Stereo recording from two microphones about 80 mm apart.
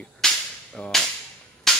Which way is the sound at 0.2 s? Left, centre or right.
Centre.